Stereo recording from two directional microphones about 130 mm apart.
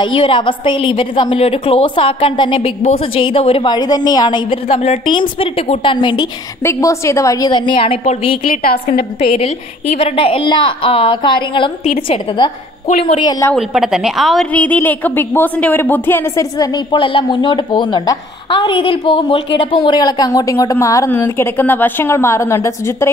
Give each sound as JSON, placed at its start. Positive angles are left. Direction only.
{"t": 0.0, "sound": "a woman's voice", "side_deg": 45}
{"t": 6.6, "sound": "a woman's voice", "side_deg": 20}
{"t": 9.2, "sound": "a woman's voice", "side_deg": 50}
{"t": 11.8, "sound": "a woman's voice", "side_deg": 65}
{"t": 13.0, "sound": "a woman's voice", "side_deg": 40}
{"t": 13.6, "sound": "a woman's voice", "side_deg": -5}
{"t": 14.5, "sound": "a woman's voice", "side_deg": 10}
{"t": 16.5, "sound": "a woman's voice", "side_deg": 30}